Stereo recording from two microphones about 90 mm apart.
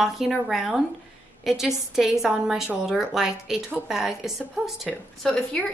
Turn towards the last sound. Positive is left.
turn(degrees=15)  # may be behind; listen again after turning